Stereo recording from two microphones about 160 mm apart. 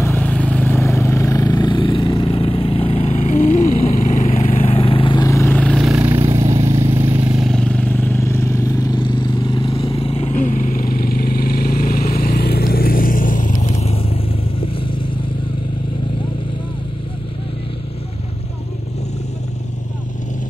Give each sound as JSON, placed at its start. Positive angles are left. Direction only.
{"t": 0.0, "sound": "vehicle", "side_deg": 10}
{"t": 4.6, "sound": "vehicle", "side_deg": 35}
{"t": 5.3, "sound": "vehicle", "side_deg": 15}
{"t": 6.2, "sound": "vehicle", "side_deg": -35}
{"t": 6.5, "sound": "vehicle", "side_deg": -20}
{"t": 10.4, "sound": "vehicle", "side_deg": 55}